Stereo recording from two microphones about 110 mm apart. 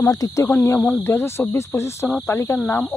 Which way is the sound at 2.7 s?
15° left (ahead or behind).